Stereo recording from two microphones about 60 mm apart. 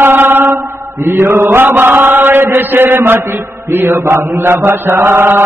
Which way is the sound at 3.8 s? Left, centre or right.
Right.